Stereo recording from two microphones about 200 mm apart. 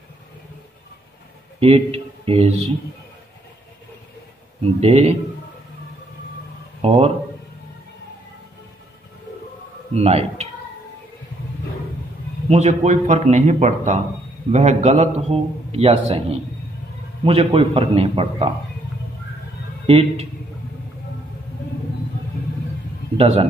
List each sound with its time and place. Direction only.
1.6 s speech: 30° right (ahead or behind)
4.7 s a man's voice: 30° right (ahead or behind)
6.8 s speech: 30° right (ahead or behind)
9.9 s speech: 30° right (ahead or behind)
12.4 s a man's voice: 35° right (ahead or behind)
19.9 s a man's voice: 30° right (ahead or behind)
23.1 s a man's voice: 30° right (ahead or behind)